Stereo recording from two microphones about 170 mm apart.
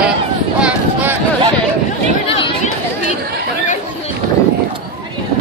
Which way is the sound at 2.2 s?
35° left (ahead or behind).